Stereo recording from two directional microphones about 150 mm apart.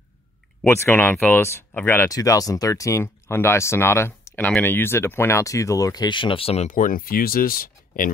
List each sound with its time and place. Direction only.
0.7 s speech: 15° left (ahead or behind); by 8.1 s 70° left (ahead or behind)